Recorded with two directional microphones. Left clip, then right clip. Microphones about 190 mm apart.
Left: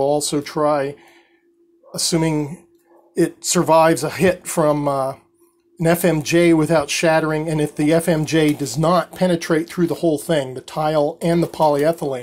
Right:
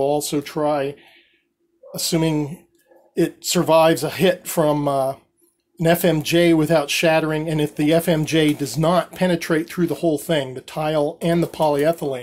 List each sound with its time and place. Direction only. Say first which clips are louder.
0.0 s speech: left 2 dB; 5° left (ahead or behind)